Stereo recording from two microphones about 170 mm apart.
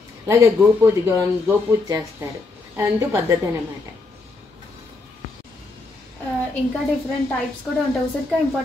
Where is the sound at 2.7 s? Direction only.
15° right (ahead or behind).